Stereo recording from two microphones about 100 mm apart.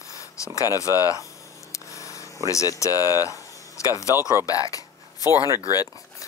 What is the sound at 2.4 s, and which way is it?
Speech, 35° left (ahead or behind).